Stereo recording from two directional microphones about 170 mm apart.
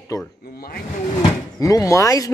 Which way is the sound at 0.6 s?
60° left (ahead or behind).